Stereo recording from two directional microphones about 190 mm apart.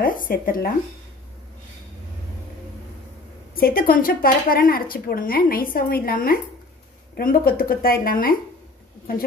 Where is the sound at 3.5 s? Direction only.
50° left (ahead or behind).